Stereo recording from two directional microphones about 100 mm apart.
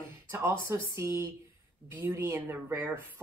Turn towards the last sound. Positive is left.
turn(degrees=-20)  # may be behind; listen again after turning